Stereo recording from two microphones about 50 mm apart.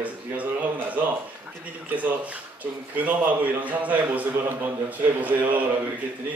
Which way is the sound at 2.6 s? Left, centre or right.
Right.